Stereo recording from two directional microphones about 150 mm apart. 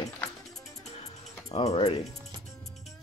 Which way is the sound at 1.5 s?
40° left (ahead or behind).